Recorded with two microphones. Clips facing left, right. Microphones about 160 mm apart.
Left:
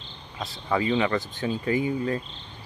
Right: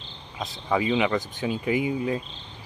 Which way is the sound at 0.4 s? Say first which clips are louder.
Right 1 dB; 10° right (ahead or behind).